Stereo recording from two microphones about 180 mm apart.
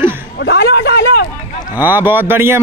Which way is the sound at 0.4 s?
65° left (ahead or behind).